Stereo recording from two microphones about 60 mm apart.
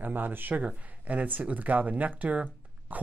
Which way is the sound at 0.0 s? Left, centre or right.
Right.